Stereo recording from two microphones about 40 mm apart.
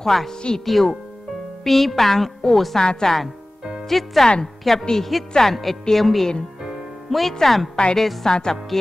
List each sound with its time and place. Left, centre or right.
0.0 s a woman's voice: centre
2.8 s a woman's voice: centre
3.9 s a woman's voice: centre
7.7 s a woman's voice: centre
8.0 s a woman's voice: centre
8.3 s a woman's voice: centre